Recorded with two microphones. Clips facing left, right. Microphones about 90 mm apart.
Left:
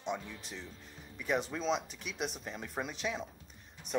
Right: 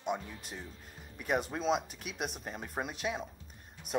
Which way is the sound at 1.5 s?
25° right (ahead or behind).